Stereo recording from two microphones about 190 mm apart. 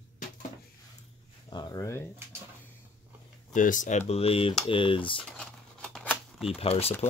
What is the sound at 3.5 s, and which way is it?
Speech, 45° left (ahead or behind).